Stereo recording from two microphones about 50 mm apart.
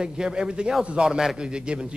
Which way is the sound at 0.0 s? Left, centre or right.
Centre.